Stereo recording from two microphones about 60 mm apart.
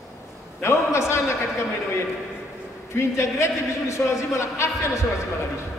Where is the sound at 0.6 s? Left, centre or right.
Left.